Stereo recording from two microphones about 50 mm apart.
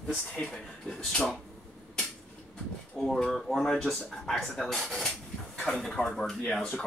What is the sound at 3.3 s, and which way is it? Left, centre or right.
Speech, centre.